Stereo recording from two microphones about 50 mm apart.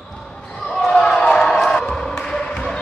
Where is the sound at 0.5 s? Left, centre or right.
Centre.